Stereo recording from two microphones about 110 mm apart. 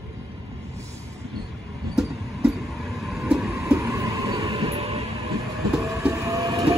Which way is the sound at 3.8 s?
30° right (ahead or behind).